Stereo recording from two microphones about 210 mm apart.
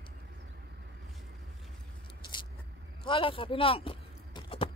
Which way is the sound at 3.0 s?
25° left (ahead or behind).